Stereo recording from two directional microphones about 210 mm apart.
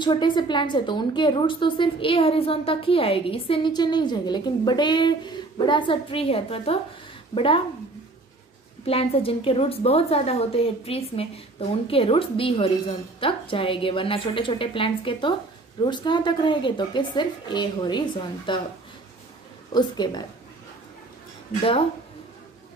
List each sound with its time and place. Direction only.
0.0 s a woman's voice: 20° left (ahead or behind)
8.8 s a woman's voice: 25° left (ahead or behind)
19.7 s a woman's voice: 20° left (ahead or behind)